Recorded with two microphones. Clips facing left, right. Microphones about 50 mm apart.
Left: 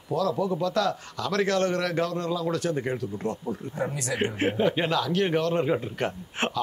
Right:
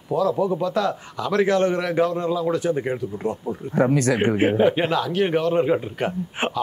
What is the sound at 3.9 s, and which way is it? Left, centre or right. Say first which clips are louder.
Speech: right 11 dB; right.